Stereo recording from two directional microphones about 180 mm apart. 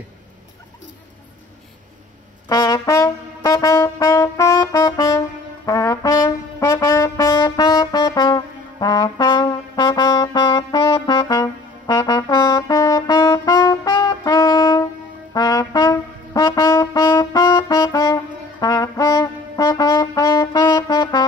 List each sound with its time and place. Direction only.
2.4 s brass instrument: 20° left (ahead or behind)